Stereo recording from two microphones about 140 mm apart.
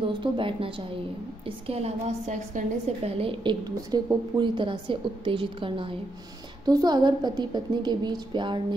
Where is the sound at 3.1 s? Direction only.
40° right (ahead or behind).